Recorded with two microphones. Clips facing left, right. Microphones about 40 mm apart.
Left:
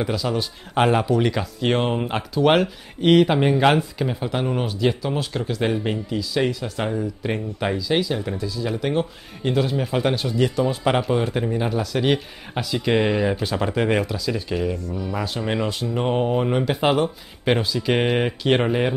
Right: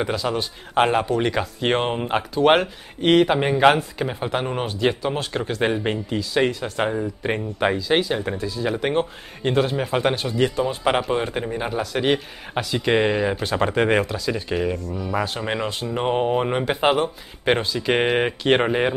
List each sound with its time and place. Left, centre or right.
0.0 s speech: centre
13.5 s speech: right
14.9 s speech: centre
15.1 s speech: right